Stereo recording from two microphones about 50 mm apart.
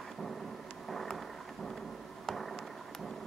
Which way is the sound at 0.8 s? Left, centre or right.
Centre.